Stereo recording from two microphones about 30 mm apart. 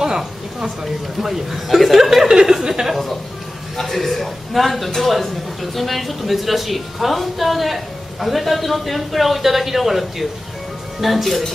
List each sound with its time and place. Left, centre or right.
0.0 s a woman's voice: centre
2.9 s speech: centre